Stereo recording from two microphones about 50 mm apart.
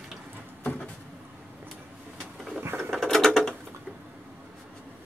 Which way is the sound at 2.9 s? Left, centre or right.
Centre.